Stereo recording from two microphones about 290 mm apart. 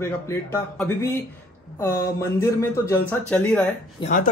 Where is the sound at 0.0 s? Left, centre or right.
Centre.